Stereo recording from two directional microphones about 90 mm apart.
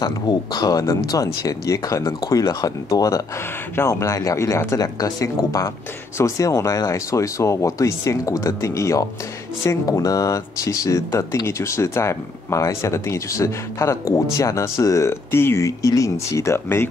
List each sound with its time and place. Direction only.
0.0 s speech: 50° left (ahead or behind); by 16.8 s 25° left (ahead or behind)